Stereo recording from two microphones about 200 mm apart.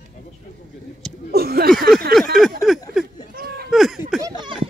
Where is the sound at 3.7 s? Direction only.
Centre (ahead or behind).